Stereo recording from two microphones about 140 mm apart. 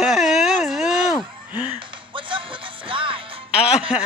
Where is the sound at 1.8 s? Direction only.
35° right (ahead or behind).